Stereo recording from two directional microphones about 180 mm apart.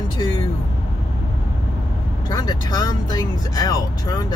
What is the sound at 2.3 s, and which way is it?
Speech, 20° left (ahead or behind).